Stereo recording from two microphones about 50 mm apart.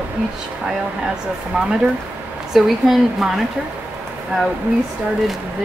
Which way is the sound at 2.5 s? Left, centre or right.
Centre.